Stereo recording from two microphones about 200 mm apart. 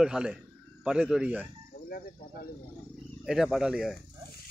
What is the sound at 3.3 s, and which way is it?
Speech, centre (ahead or behind).